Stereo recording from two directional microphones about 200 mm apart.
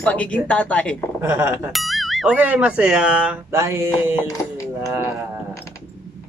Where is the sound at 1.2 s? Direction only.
10° right (ahead or behind).